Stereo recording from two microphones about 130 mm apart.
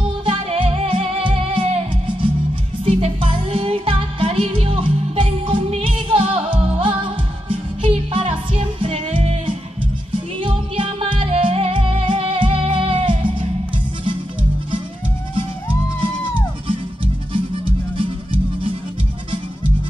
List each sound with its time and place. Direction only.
0.2 s music: 45° right (ahead or behind)
16.6 s music: 40° right (ahead or behind)